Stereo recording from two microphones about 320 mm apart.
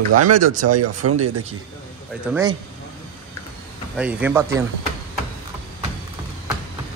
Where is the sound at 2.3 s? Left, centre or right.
Centre.